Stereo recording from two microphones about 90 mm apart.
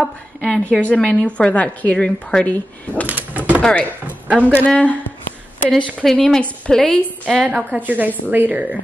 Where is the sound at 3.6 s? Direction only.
15° left (ahead or behind).